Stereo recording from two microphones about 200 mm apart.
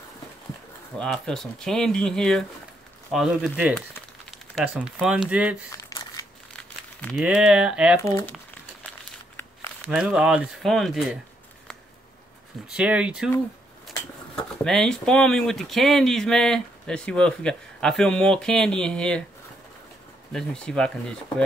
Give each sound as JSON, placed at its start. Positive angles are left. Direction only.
{"t": 0.9, "sound": "speech", "side_deg": 5}
{"t": 5.7, "sound": "crumpling", "side_deg": 15}
{"t": 7.0, "sound": "speech", "side_deg": 5}
{"t": 8.0, "sound": "speech", "side_deg": 15}
{"t": 9.4, "sound": "crumpling", "side_deg": 10}
{"t": 9.8, "sound": "speech", "side_deg": -5}
{"t": 12.7, "sound": "speech", "side_deg": -5}
{"t": 20.3, "sound": "speech", "side_deg": 5}